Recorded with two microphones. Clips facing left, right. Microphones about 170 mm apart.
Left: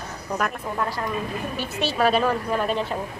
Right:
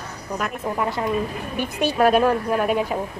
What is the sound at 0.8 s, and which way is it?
A woman's voice, 20° right (ahead or behind).